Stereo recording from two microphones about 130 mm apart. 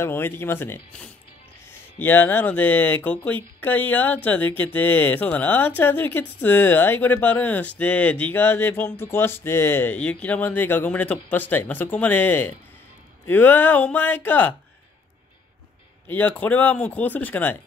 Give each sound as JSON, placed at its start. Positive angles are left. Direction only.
{"t": 0.0, "sound": "speech", "side_deg": 15}
{"t": 16.1, "sound": "speech", "side_deg": 15}